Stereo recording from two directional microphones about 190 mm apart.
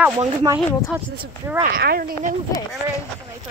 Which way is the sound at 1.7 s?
50° right (ahead or behind).